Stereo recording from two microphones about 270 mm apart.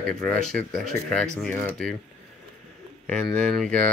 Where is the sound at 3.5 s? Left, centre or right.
Centre.